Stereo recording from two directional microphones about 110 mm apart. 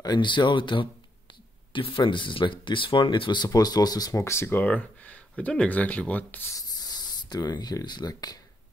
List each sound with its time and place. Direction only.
0.0 s speech: 40° left (ahead or behind)
4.2 s speech: 25° left (ahead or behind)
6.5 s speech: 35° left (ahead or behind)